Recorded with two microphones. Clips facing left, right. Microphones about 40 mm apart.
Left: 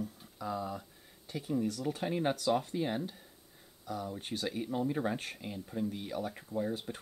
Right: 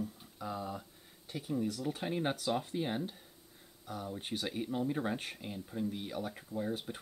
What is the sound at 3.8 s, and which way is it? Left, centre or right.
Speech, right.